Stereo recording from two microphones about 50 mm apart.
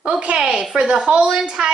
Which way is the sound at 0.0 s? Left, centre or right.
Right.